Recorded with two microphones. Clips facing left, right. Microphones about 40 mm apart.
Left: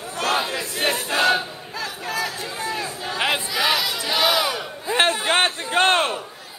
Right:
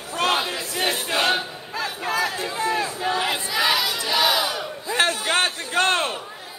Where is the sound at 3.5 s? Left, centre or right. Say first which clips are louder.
Even; centre.